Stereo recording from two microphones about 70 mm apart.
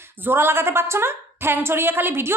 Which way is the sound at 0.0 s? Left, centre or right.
Right.